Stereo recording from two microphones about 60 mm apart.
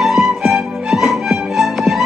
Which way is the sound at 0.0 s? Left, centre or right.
Centre.